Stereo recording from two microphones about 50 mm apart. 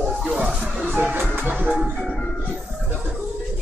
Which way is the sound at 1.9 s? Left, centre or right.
Centre.